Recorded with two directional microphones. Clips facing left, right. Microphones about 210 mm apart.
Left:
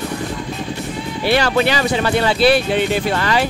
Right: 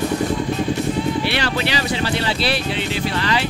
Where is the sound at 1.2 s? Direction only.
45° left (ahead or behind).